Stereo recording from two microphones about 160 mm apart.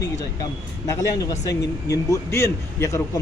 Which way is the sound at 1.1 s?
25° left (ahead or behind).